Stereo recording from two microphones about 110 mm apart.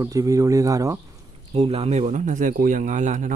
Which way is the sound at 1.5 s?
70° right (ahead or behind).